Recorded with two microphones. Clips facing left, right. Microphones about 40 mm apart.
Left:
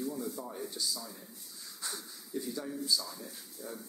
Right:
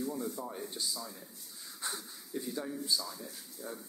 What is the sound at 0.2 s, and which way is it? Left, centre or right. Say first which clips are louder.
Speech: even; right.